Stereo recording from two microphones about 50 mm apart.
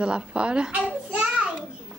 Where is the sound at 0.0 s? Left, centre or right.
Centre.